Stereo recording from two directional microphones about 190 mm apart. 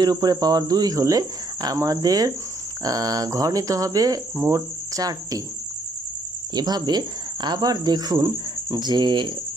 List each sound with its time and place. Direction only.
0.0 s speech: 20° right (ahead or behind)
6.5 s speech: 20° right (ahead or behind)